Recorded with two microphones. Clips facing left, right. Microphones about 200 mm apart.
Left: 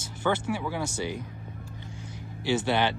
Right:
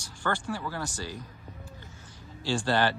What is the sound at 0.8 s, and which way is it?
Speech, 20° left (ahead or behind).